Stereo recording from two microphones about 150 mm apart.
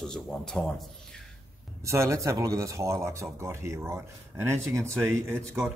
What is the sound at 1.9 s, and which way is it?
Speech, 20° right (ahead or behind).